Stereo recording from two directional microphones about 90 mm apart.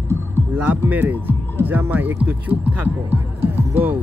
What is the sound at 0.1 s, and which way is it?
Music, 25° right (ahead or behind).